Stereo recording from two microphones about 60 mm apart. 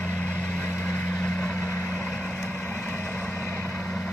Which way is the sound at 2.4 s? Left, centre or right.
Left.